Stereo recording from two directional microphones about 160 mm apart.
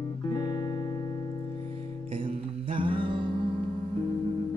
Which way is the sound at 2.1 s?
35° right (ahead or behind).